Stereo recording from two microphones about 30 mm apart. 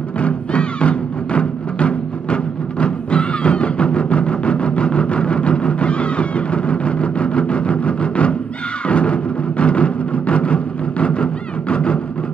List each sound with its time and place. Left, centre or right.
0.2 s music: left